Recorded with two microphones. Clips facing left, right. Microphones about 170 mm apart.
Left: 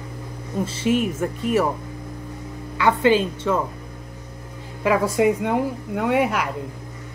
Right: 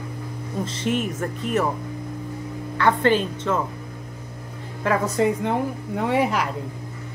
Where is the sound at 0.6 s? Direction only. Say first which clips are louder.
Left 4 dB; 10° left (ahead or behind).